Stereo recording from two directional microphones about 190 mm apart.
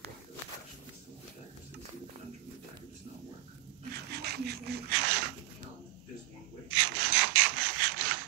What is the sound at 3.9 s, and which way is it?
Dog, 60° right (ahead or behind).